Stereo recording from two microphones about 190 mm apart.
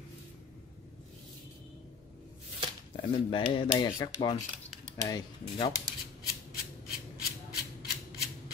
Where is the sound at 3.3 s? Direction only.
25° left (ahead or behind).